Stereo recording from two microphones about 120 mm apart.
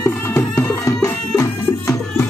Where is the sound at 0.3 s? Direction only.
20° left (ahead or behind).